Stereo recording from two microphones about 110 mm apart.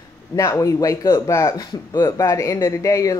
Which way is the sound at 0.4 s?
30° left (ahead or behind).